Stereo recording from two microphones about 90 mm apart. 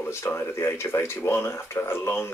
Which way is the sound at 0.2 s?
30° left (ahead or behind).